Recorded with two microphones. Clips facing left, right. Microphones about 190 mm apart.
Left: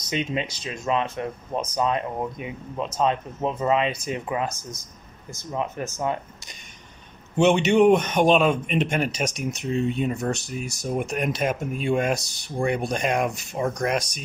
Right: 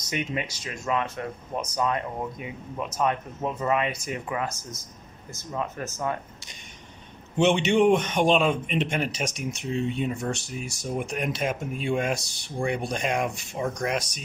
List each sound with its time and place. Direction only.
0.1 s speech: 25° left (ahead or behind)
7.3 s speech: 45° left (ahead or behind)